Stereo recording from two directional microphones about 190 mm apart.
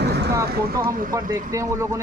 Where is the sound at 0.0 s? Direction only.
60° right (ahead or behind).